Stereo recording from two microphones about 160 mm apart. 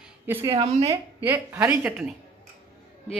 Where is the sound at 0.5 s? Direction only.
40° right (ahead or behind).